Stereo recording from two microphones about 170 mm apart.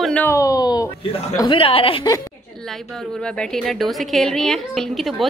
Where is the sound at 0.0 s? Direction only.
10° left (ahead or behind).